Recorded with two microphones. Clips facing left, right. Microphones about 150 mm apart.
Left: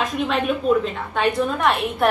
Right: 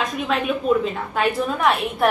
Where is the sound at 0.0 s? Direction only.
Centre (ahead or behind).